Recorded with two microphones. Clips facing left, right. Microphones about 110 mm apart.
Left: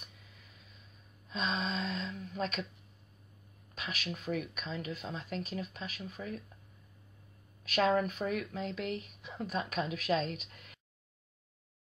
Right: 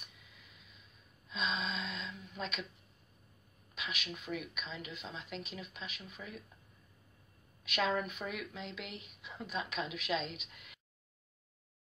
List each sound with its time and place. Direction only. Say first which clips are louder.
1.3 s a sound: left 3 dB; 40° left (ahead or behind)
3.7 s speech: left 3 dB; 40° left (ahead or behind)
7.6 s speech: left 5 dB; 40° left (ahead or behind)